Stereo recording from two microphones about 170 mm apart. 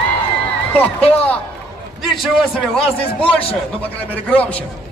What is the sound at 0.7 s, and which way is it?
Speech, 10° left (ahead or behind).